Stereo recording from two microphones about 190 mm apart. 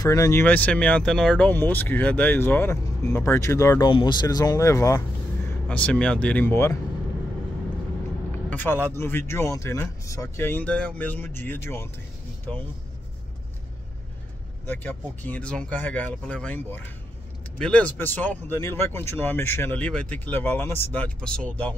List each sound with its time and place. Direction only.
0.0 s speech: 15° left (ahead or behind)
5.7 s speech: 5° left (ahead or behind)
8.5 s vehicle: 10° left (ahead or behind)
8.8 s speech: 10° left (ahead or behind)
14.7 s speech: 10° left (ahead or behind)